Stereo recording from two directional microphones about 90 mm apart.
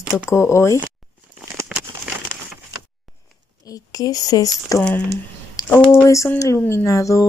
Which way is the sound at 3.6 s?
40° left (ahead or behind).